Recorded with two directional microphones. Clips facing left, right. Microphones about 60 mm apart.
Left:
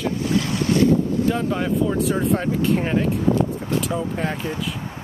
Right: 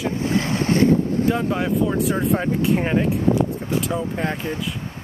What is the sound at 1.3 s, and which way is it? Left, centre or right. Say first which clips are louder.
Speech: right 1 dB; centre.